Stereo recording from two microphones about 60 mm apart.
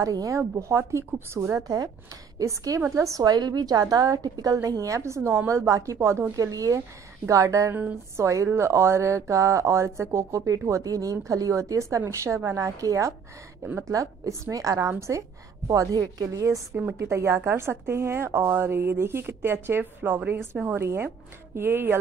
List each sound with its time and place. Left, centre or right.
0.0 s a woman's voice: right
0.4 s speech: right
1.6 s speech: right
2.3 s a woman's voice: right
4.6 s a woman's voice: right
5.5 s a woman's voice: right
5.9 s speech: right
6.3 s a woman's voice: right
10.8 s a woman's voice: right
14.9 s a woman's voice: right
17.0 s a woman's voice: right